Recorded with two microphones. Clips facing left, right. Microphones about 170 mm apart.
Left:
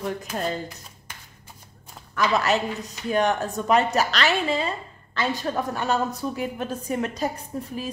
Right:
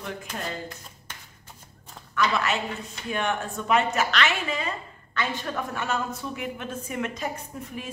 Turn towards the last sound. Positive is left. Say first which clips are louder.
# left 5 dB
turn(degrees=35)  # may be behind; listen again after turning